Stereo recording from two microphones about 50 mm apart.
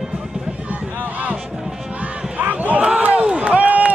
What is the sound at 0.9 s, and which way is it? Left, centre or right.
Music, right.